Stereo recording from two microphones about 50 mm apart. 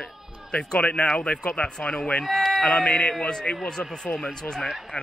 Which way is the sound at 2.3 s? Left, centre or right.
Centre.